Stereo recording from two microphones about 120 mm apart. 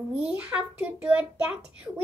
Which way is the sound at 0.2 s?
10° right (ahead or behind).